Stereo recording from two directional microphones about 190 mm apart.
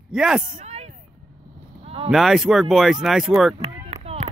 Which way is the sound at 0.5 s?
35° right (ahead or behind).